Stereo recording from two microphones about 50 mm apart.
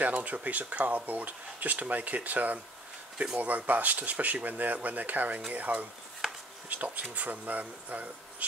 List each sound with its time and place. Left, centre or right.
0.0 s speech: right